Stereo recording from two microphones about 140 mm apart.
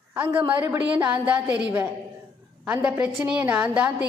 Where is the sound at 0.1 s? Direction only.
15° right (ahead or behind).